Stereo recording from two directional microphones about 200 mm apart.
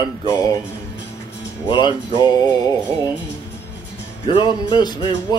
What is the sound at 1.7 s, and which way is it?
Speech, 25° left (ahead or behind).